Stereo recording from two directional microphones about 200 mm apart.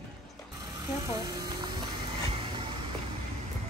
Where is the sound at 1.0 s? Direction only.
20° right (ahead or behind).